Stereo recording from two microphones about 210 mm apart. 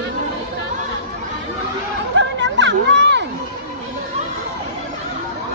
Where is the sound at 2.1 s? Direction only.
55° right (ahead or behind).